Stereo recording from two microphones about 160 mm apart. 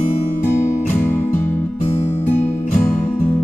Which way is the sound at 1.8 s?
45° left (ahead or behind).